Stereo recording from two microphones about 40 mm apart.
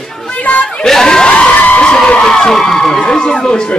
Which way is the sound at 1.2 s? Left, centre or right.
Left.